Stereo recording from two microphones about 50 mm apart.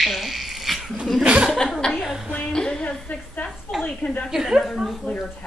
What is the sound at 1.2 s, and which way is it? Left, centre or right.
Speech, right.